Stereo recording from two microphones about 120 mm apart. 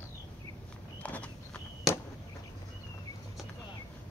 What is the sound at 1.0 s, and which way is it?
Horse, 10° left (ahead or behind).